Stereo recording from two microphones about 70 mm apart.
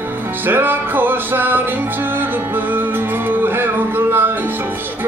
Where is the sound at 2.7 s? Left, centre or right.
Right.